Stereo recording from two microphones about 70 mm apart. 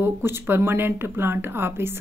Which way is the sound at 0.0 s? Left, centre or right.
Right.